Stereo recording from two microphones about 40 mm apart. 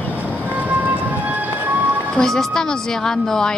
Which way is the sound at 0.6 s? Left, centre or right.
Right.